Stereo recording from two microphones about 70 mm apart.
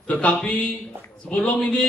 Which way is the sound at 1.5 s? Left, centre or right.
Centre.